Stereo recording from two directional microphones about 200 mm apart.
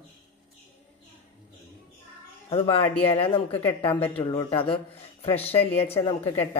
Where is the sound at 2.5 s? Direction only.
25° left (ahead or behind).